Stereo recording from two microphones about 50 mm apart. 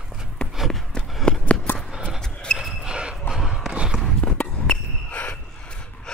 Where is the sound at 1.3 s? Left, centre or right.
Left.